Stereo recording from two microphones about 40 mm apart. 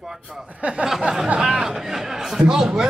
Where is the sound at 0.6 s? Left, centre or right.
Right.